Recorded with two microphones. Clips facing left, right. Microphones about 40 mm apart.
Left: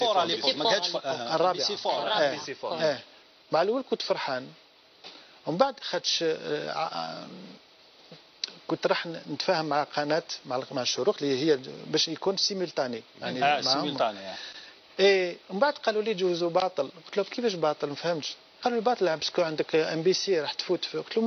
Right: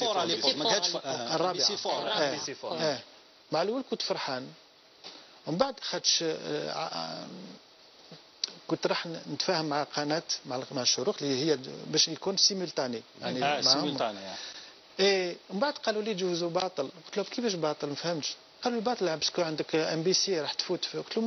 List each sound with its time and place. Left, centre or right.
0.2 s speech: centre
3.7 s speech: centre
5.4 s a man's voice: centre
5.9 s speech: centre
8.5 s a man's voice: centre